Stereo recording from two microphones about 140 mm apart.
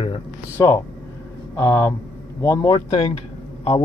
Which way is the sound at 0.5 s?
15° left (ahead or behind).